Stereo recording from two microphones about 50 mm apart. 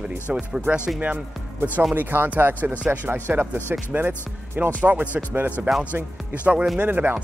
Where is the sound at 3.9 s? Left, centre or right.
Right.